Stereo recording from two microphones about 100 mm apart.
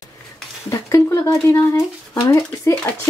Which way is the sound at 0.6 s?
30° left (ahead or behind).